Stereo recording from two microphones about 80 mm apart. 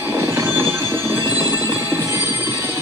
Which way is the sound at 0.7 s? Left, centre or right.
Right.